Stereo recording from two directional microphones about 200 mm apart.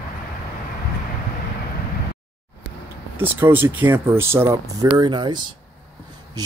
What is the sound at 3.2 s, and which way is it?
Speech, 10° right (ahead or behind).